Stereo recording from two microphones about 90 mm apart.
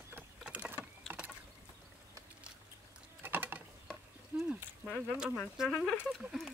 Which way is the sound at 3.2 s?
20° right (ahead or behind).